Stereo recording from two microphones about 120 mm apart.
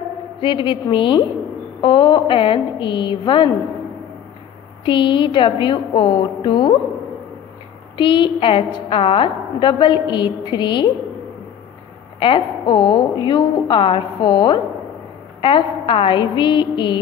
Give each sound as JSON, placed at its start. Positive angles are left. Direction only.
{"t": 0.4, "sound": "a woman's voice", "side_deg": 45}
{"t": 4.8, "sound": "a woman's voice", "side_deg": 45}
{"t": 8.0, "sound": "a woman's voice", "side_deg": 45}
{"t": 12.2, "sound": "a woman's voice", "side_deg": 40}